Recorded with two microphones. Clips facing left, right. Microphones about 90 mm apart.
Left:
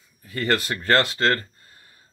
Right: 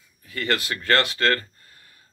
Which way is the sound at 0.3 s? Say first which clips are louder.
Left 2 dB; 40° left (ahead or behind).